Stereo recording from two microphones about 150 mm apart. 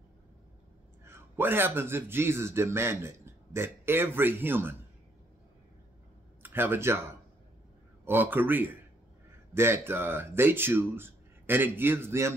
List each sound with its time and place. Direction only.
1.0 s speech: 15° right (ahead or behind)
6.4 s speech: 15° right (ahead or behind)
8.0 s speech: 15° right (ahead or behind)